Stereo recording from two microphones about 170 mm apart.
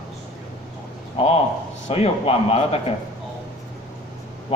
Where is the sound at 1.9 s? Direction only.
40° left (ahead or behind).